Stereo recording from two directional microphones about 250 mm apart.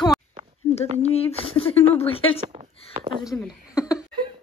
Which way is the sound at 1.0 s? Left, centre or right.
Left.